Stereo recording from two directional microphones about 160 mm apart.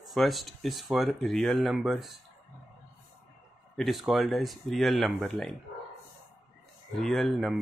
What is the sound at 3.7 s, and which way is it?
Speech, centre (ahead or behind).